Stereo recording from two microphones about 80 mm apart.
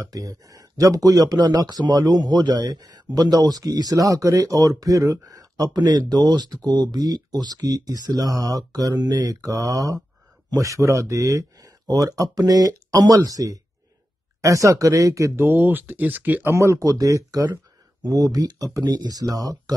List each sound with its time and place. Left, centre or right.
0.0 s speech: right
15.3 s speech: right
16.4 s speech: right